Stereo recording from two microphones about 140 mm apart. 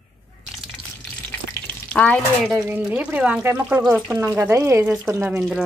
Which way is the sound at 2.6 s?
10° right (ahead or behind).